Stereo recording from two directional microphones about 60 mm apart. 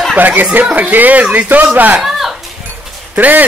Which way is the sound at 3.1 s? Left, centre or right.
Right.